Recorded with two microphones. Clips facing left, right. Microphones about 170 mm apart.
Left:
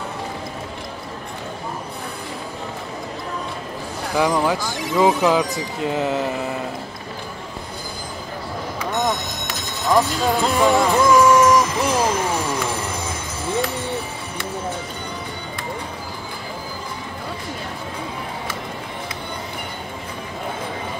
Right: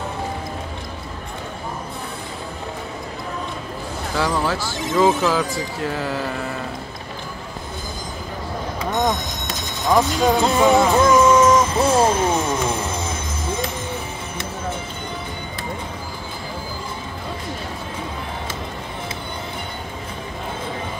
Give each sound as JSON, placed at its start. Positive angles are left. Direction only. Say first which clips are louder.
{"t": 4.1, "sound": "speech", "louder": "left 3 dB", "side_deg": 15}
{"t": 8.9, "sound": "music", "louder": "right 1 dB", "side_deg": -20}